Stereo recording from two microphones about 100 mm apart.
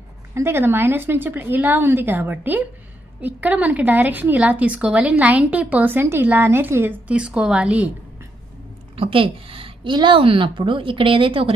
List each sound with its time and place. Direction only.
0.3 s a woman's voice: 25° right (ahead or behind)
8.9 s a woman's voice: 65° right (ahead or behind)